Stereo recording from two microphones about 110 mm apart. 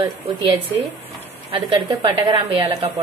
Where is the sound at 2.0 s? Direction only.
50° right (ahead or behind).